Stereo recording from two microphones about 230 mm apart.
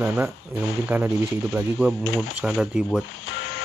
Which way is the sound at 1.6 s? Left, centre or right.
Centre.